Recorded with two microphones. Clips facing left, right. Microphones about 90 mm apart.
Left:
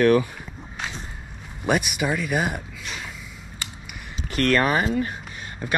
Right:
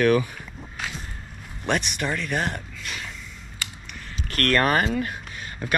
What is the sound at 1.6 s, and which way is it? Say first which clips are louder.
Speech: left 3 dB; 5° left (ahead or behind).